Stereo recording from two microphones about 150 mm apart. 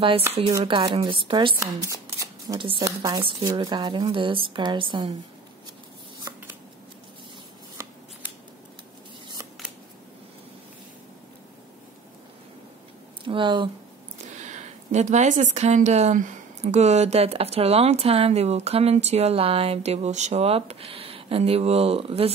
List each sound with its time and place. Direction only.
0.7 s speech: 30° right (ahead or behind)
1.6 s speech: 20° right (ahead or behind)
6.3 s scissors: 25° right (ahead or behind)
13.2 s speech: 35° right (ahead or behind)
14.1 s a woman's voice: 50° right (ahead or behind)